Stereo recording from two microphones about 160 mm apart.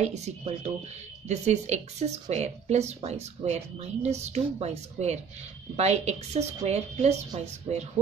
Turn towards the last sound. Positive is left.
turn(degrees=-40)  # may be behind; listen again after turning